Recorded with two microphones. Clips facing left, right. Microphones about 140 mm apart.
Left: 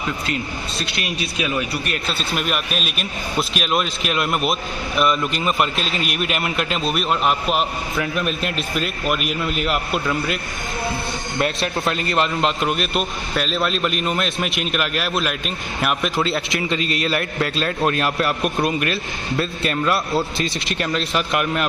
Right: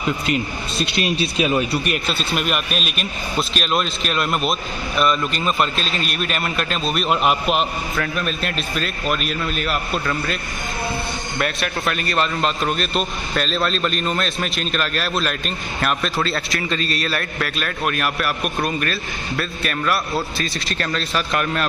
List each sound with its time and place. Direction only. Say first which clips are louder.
0.3 s speech: right 3 dB; 20° right (ahead or behind)
2.0 s a man's voice: right 1 dB; centre (ahead or behind); by 6.9 s 15° left (ahead or behind)
6.9 s a man's voice: right 2 dB; 5° right (ahead or behind)
8.0 s a man's voice: left 2 dB; 15° left (ahead or behind)
9.9 s a man's voice: left 1 dB; centre (ahead or behind)
11.3 s a man's voice: left 2 dB; 25° left (ahead or behind)
12.9 s a man's voice: even; 5° left (ahead or behind)
16.2 s a man's voice: left 2 dB; 20° left (ahead or behind)